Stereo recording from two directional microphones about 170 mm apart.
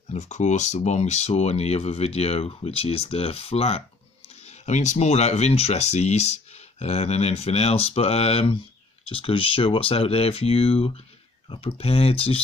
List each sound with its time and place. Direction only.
0.1 s speech: 45° left (ahead or behind)